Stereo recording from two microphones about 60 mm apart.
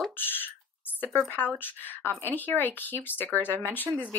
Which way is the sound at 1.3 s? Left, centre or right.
Left.